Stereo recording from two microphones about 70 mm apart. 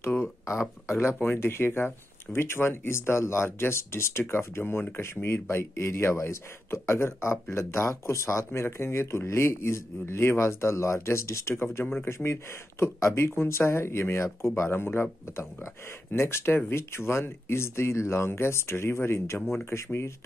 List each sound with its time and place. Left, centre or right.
0.5 s a man's voice: left